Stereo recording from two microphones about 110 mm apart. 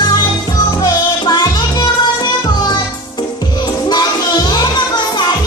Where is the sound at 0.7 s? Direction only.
40° left (ahead or behind).